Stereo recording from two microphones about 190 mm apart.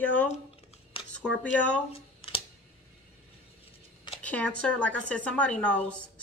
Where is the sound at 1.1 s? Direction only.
5° left (ahead or behind).